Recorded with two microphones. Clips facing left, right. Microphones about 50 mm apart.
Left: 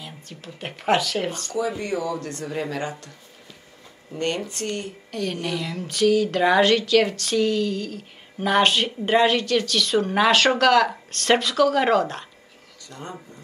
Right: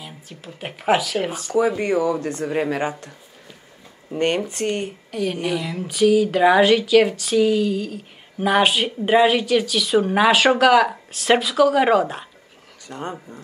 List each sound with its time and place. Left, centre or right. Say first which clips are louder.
0.0 s speech: right 1 dB; centre
1.8 s speech: right 6 dB; right
4.1 s speech: right 5 dB; right; by 12.3 s centre
12.8 s speech: right 7 dB; right